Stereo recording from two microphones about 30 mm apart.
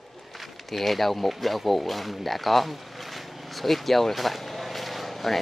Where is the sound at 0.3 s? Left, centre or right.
Centre.